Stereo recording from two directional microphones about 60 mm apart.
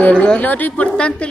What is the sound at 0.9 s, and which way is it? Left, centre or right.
Speech, centre.